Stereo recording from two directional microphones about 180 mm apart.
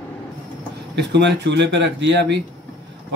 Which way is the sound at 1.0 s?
75° right (ahead or behind).